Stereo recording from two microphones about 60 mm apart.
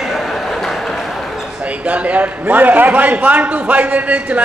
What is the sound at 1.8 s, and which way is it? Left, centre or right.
A man's voice, right.